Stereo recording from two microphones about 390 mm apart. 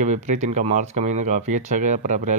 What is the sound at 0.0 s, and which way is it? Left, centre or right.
Speech, centre.